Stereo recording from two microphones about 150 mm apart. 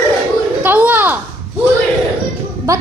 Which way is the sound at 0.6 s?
10° right (ahead or behind).